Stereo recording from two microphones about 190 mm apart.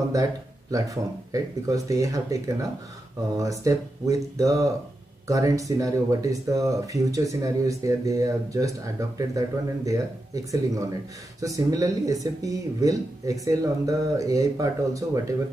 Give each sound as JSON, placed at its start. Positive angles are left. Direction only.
{"t": 0.1, "sound": "speech", "side_deg": -20}